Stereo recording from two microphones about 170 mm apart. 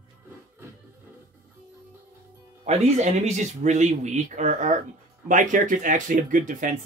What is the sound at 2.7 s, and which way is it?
Speech, 40° right (ahead or behind).